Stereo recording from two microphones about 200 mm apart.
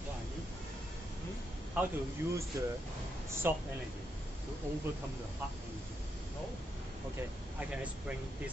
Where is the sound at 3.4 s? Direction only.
10° right (ahead or behind).